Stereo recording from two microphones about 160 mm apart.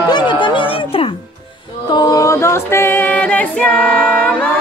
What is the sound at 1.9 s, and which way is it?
Female singing, 25° left (ahead or behind).